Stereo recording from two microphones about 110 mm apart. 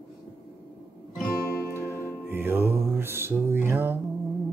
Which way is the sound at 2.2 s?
20° right (ahead or behind).